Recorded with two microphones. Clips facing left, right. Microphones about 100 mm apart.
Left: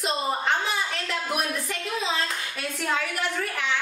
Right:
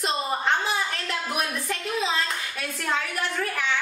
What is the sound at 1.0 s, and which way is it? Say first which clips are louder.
A woman's voice: even; centre (ahead or behind).